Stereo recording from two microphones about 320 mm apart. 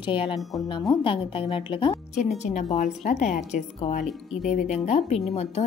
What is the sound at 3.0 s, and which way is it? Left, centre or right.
Speech, left.